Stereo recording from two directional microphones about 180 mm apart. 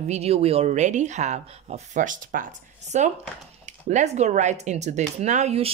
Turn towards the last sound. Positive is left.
turn(degrees=-40)  # may be behind; listen again after turning